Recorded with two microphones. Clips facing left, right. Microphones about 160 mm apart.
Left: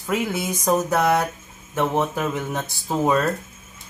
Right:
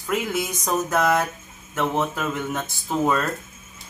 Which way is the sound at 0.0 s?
5° left (ahead or behind).